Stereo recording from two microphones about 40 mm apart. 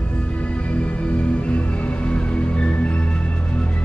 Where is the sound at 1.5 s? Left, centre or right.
Left.